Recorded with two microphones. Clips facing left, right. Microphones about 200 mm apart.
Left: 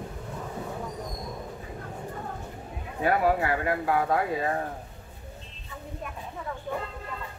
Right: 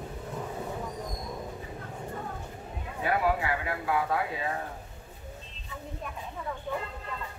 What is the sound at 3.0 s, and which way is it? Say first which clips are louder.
Speech: left 4 dB; 45° left (ahead or behind).